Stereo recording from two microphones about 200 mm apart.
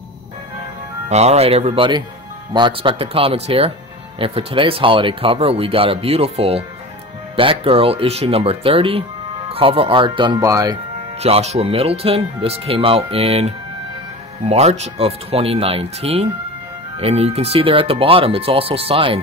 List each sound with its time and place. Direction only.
1.0 s speech: 35° right (ahead or behind); by 10.8 s 15° right (ahead or behind)
11.1 s speech: 30° right (ahead or behind)